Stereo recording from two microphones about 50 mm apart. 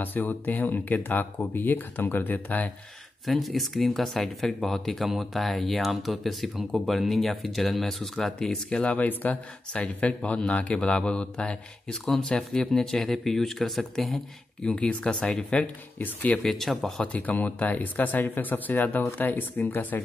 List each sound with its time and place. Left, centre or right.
0.0 s speech: left
3.3 s speech: centre
8.8 s a man's voice: left
11.9 s speech: centre
14.6 s a man's voice: centre
16.0 s speech: left
16.4 s speech: centre
17.0 s speech: left